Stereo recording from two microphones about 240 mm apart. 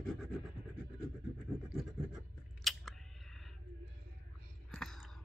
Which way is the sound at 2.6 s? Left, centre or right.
Centre.